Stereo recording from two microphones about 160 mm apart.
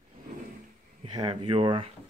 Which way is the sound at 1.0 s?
30° right (ahead or behind).